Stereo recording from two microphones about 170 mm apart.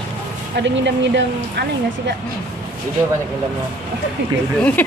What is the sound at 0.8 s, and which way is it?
Speech, 90° right.